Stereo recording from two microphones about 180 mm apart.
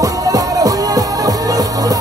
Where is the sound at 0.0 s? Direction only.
20° right (ahead or behind).